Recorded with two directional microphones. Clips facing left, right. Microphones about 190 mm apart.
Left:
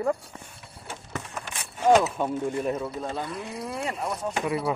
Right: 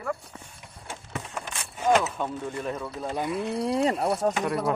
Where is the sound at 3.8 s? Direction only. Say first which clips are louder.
Right 5 dB; 35° right (ahead or behind).